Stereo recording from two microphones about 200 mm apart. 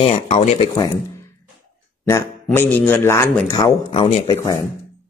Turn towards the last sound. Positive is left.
turn(degrees=15)  # may be behind; listen again after turning